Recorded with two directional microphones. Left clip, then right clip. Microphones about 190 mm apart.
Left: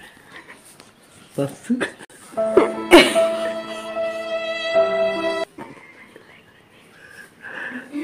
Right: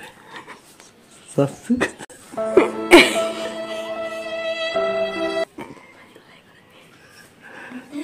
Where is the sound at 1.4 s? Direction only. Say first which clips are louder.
Right 3 dB; 40° right (ahead or behind).